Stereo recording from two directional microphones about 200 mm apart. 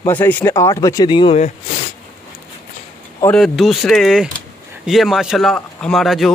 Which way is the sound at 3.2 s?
5° left (ahead or behind).